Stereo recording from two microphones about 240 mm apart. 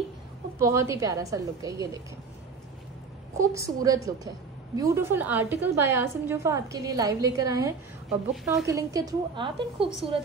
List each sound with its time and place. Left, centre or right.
0.6 s a woman's voice: centre
3.3 s a woman's voice: centre